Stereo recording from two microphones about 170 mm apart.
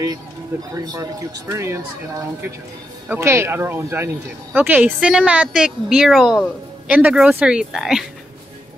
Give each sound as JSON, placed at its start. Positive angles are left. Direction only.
{"t": 0.7, "sound": "a man's voice", "side_deg": -20}